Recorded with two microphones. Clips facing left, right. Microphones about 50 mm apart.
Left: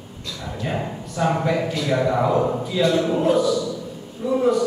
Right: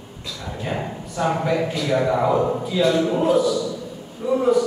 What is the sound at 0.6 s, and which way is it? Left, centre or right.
A man's voice, centre.